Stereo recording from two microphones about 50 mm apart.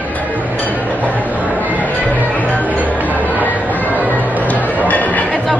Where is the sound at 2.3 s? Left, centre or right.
Left.